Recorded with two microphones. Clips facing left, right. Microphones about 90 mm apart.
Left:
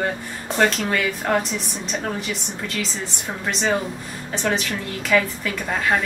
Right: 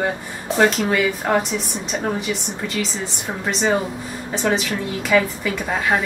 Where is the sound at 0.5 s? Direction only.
Centre (ahead or behind).